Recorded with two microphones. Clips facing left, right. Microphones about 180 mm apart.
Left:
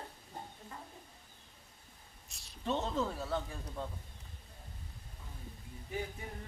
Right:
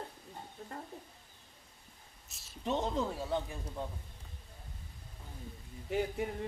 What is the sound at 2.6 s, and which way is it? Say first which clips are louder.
Speech: right 1 dB; 15° right (ahead or behind).